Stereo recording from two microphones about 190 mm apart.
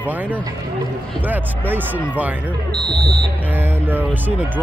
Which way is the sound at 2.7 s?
25° right (ahead or behind).